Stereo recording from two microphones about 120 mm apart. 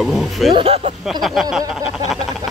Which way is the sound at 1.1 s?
Centre (ahead or behind).